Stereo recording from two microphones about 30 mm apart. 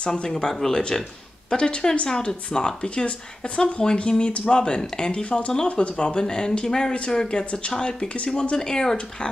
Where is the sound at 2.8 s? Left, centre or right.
Left.